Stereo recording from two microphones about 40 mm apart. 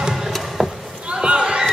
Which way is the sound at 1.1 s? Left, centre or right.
Right.